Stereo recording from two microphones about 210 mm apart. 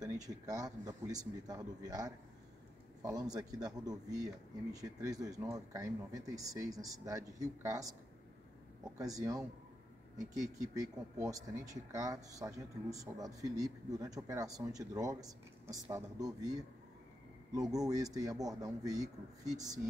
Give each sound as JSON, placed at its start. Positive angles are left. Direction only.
{"t": 0.0, "sound": "speech", "side_deg": -15}
{"t": 8.9, "sound": "speech", "side_deg": -15}
{"t": 17.8, "sound": "speech", "side_deg": -15}